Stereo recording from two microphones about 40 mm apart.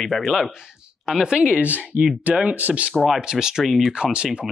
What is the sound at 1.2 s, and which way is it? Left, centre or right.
Speech, right.